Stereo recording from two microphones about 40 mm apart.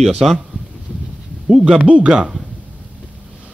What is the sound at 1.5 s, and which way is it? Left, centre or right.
Speech, centre.